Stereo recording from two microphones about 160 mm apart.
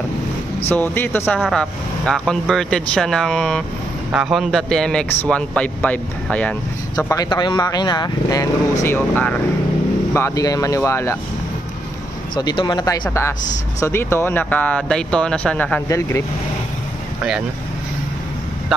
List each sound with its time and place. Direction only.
0.7 s a man's voice: 10° left (ahead or behind)
7.2 s speech: 25° left (ahead or behind)
8.8 s speech: 10° left (ahead or behind)
12.4 s speech: 25° left (ahead or behind)